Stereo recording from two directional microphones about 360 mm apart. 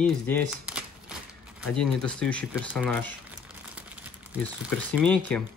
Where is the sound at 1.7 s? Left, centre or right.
Centre.